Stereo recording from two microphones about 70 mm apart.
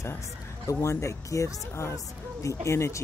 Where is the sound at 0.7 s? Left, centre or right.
Left.